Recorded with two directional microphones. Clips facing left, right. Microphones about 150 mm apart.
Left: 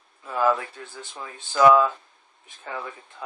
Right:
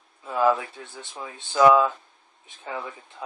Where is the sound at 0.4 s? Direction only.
5° right (ahead or behind).